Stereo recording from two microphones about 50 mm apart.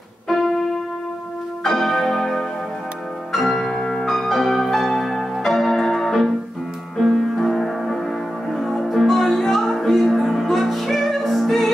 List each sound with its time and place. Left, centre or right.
1.6 s music: centre